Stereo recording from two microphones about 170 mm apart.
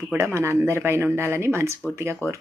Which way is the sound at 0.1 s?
15° right (ahead or behind).